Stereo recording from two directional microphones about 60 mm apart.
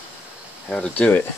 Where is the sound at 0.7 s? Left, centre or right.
Centre.